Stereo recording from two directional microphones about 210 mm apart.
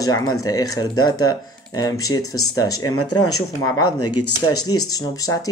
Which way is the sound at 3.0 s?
90° left.